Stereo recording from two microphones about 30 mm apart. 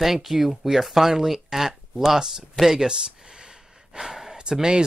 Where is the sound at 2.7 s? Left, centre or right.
Right.